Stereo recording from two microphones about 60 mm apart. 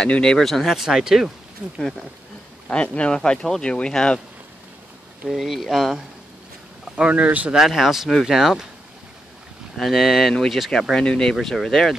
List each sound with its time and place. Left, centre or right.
0.0 s speech: centre
2.7 s speech: centre
3.2 s speech: centre
5.3 s speech: centre
7.0 s speech: centre
7.5 s speech: centre
9.8 s speech: centre